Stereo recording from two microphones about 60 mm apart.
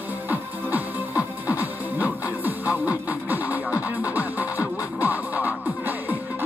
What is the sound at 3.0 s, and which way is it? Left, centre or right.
Music, right.